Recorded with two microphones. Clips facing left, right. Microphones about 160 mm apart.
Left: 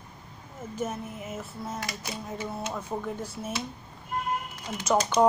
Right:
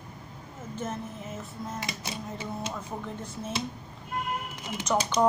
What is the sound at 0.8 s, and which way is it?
Speech, 10° left (ahead or behind).